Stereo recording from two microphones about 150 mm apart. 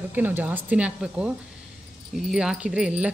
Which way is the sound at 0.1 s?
10° right (ahead or behind).